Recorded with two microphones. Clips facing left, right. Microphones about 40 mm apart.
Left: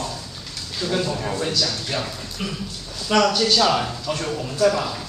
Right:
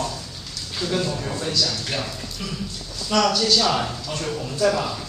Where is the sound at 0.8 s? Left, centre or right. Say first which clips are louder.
Left 1 dB; centre.